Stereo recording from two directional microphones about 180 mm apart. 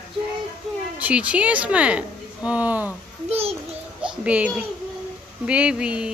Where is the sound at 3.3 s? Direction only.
35° right (ahead or behind).